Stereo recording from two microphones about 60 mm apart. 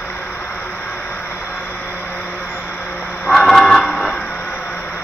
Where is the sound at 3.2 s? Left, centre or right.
Centre.